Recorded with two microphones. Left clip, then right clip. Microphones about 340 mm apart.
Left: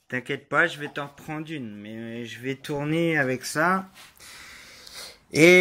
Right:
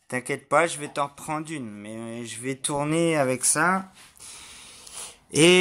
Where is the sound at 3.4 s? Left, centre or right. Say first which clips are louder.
Even; centre.